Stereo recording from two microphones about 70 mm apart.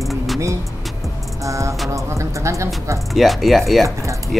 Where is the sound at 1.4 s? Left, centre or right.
Right.